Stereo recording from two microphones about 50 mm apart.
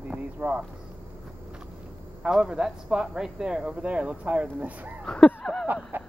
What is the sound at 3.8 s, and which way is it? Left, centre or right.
Speech, right.